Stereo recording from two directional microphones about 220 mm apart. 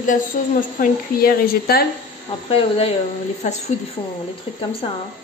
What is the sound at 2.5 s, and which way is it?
A woman's voice, 25° left (ahead or behind).